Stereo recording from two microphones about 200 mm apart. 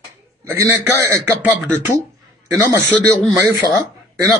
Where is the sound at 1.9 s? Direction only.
15° right (ahead or behind).